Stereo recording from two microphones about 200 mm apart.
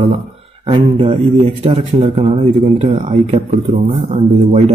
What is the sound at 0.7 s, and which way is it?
A man's voice, 25° right (ahead or behind).